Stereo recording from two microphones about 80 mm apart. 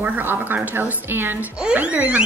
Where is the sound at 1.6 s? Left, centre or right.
Centre.